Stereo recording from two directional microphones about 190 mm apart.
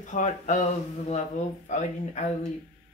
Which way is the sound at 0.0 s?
40° left (ahead or behind).